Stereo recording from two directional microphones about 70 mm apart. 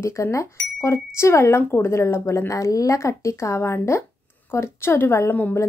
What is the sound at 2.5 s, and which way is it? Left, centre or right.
Speech, left.